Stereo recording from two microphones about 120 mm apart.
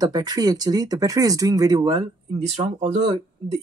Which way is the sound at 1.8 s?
40° right (ahead or behind).